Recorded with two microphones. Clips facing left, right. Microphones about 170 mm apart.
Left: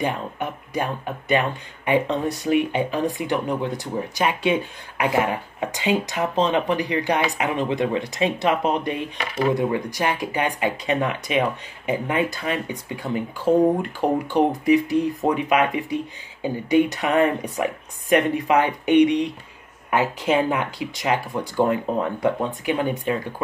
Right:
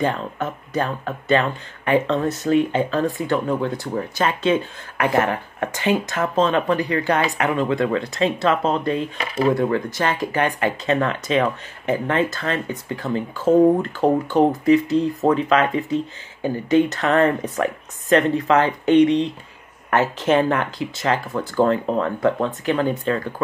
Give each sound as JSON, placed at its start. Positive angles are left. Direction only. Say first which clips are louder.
{"t": 0.0, "sound": "speech", "louder": "right 3 dB", "side_deg": 15}